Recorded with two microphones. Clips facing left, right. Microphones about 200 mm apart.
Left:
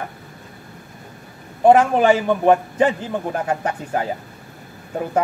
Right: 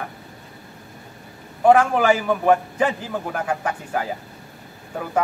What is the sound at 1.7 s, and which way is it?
A man's voice, 25° left (ahead or behind).